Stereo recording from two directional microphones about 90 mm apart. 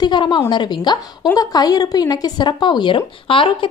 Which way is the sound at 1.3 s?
45° left (ahead or behind).